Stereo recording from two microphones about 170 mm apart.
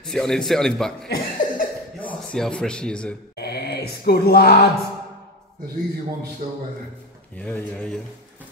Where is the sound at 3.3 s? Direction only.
70° left (ahead or behind).